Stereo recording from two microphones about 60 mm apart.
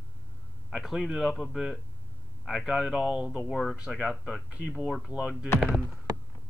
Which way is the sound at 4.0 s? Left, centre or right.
Centre.